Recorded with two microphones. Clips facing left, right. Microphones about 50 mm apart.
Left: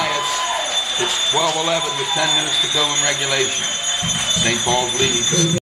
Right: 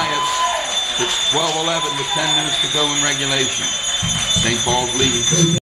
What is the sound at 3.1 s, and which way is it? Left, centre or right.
Speech, centre.